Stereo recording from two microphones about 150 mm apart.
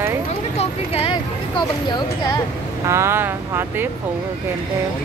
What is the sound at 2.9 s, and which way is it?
Speech, 15° right (ahead or behind).